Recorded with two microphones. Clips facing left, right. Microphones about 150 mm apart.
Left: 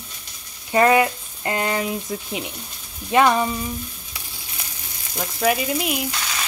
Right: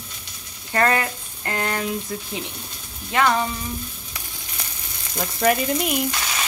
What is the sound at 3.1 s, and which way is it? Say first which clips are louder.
Frying: left 3 dB; 20° left (ahead or behind).